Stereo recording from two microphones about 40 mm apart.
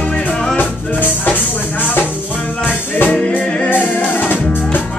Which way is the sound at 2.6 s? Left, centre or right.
Left.